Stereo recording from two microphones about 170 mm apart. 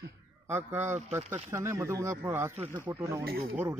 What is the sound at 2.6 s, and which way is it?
Speech, 50° right (ahead or behind).